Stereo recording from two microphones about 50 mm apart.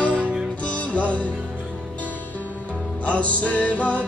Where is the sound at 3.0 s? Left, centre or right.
Left.